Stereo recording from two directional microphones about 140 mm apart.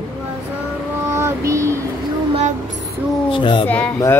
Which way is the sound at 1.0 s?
20° right (ahead or behind).